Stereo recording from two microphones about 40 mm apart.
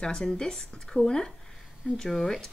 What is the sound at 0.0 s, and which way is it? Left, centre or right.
Speech, centre.